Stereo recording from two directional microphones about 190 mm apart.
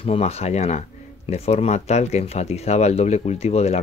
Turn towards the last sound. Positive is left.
turn(degrees=35)  # may be behind; listen again after turning